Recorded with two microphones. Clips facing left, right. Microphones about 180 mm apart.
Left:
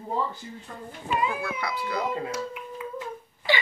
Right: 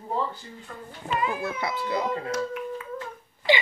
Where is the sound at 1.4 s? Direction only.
25° right (ahead or behind).